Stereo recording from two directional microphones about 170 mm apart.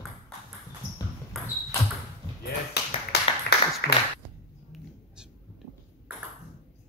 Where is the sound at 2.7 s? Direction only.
70° left (ahead or behind).